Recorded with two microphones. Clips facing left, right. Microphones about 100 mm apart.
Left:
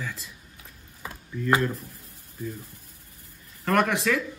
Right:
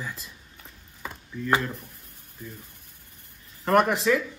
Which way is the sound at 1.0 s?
5° left (ahead or behind).